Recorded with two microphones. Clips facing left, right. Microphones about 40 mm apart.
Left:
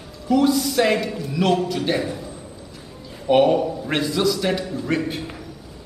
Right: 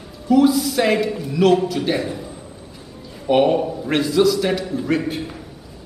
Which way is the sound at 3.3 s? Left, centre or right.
Centre.